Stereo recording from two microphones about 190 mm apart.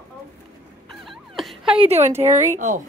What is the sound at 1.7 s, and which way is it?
Speech, 35° right (ahead or behind).